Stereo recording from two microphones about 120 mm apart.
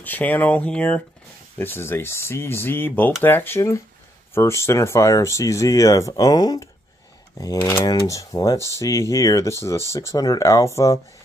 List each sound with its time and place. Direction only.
0.0 s speech: 15° left (ahead or behind)